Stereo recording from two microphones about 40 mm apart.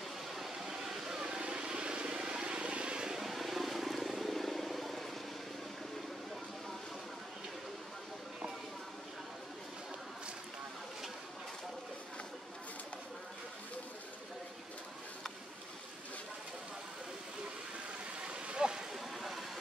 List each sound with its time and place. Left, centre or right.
0.3 s vehicle: centre; by 3.2 s right
3.2 s vehicle: centre
18.2 s a sound: right
18.9 s vehicle: centre